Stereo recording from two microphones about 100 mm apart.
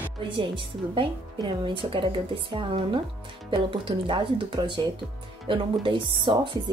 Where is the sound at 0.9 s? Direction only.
55° right (ahead or behind).